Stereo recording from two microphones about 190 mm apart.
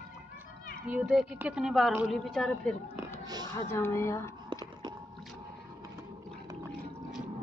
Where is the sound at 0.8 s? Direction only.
5° right (ahead or behind); by 4.3 s 15° left (ahead or behind).